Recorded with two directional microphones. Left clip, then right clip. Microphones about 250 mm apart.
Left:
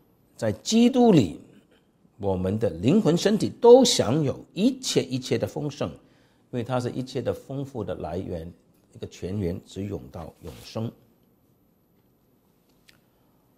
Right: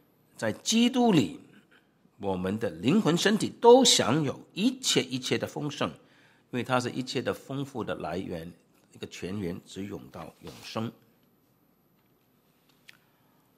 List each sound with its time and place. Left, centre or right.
0.4 s a man's voice: left